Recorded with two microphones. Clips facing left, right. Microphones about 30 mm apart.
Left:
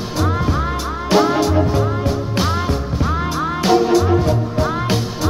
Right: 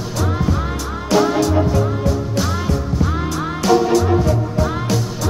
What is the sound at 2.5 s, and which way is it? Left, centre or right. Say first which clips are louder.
Music: even; left.